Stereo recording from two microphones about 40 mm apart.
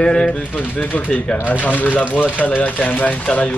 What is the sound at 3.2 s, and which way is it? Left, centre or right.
Speech, left.